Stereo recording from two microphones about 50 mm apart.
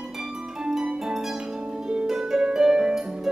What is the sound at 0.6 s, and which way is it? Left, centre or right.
Harp, centre.